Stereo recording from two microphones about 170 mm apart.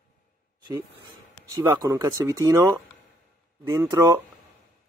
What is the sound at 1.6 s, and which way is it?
Speech, 20° right (ahead or behind).